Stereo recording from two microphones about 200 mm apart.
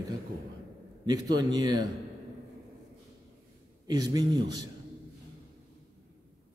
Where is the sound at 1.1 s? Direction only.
20° right (ahead or behind).